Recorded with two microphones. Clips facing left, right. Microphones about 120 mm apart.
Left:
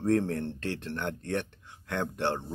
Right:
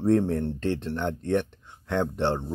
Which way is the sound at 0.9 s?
20° right (ahead or behind).